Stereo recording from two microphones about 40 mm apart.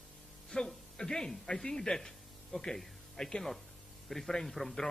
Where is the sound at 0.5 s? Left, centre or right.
Centre.